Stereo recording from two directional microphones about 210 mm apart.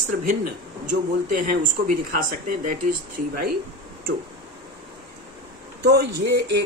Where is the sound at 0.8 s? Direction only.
40° right (ahead or behind).